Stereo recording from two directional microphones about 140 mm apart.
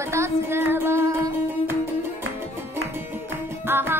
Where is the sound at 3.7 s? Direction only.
15° right (ahead or behind).